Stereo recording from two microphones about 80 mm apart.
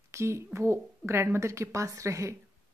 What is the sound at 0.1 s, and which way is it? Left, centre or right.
A woman's voice, right.